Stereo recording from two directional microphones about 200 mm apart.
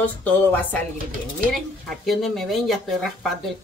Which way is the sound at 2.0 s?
Centre (ahead or behind).